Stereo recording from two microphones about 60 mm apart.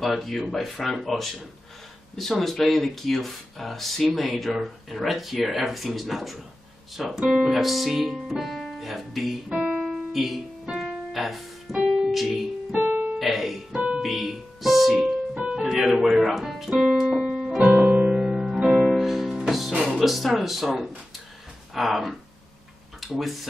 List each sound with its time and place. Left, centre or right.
0.0 s speech: centre
2.4 s speech: centre
7.6 s speech: centre
9.5 s piano: right
9.8 s music: centre
13.2 s speech: centre
13.7 s music: right
14.0 s speech: centre
15.0 s keyboard: centre
15.7 s speech: centre
16.9 s music: centre
17.6 s music: right; by 19.7 s centre
19.7 s speech: centre